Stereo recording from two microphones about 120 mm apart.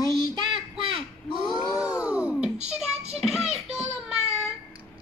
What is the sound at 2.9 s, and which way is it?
Music, 60° right (ahead or behind).